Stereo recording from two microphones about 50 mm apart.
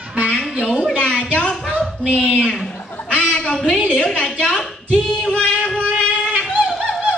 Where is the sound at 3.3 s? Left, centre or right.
Centre.